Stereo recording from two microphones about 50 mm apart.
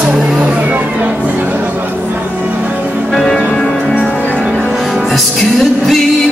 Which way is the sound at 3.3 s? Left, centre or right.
Centre.